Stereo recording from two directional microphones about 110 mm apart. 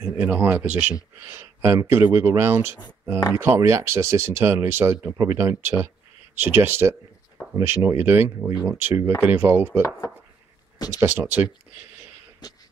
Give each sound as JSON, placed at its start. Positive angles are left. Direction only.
{"t": 0.0, "sound": "speech", "side_deg": -15}
{"t": 1.2, "sound": "speech", "side_deg": -25}
{"t": 10.9, "sound": "speech", "side_deg": -20}